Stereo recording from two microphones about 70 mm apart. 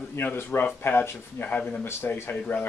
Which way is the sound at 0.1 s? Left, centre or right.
Left.